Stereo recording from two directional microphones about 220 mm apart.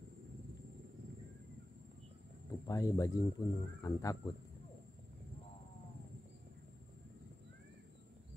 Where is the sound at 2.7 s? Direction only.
15° left (ahead or behind).